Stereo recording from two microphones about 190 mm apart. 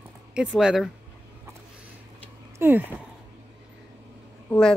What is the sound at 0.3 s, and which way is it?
Speech, 5° right (ahead or behind).